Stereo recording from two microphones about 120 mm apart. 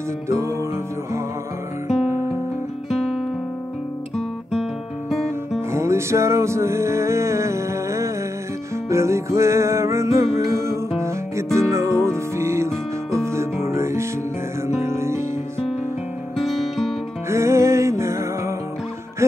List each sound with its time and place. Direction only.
0.3 s music: 25° right (ahead or behind)
2.9 s guitar: centre (ahead or behind)
5.7 s music: 20° right (ahead or behind)
16.3 s music: centre (ahead or behind)
17.3 s music: 25° right (ahead or behind)